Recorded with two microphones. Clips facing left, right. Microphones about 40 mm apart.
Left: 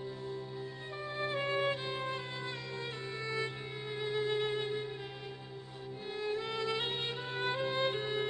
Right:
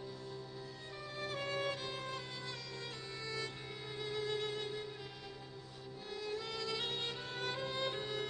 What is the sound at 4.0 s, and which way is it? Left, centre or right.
Music, left.